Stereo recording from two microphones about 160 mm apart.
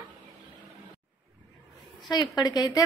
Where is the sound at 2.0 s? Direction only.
25° left (ahead or behind).